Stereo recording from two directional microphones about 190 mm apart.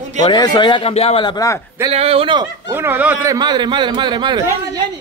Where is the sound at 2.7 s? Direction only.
10° right (ahead or behind).